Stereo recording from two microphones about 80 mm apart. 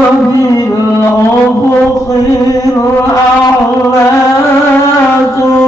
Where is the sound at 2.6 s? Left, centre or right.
Left.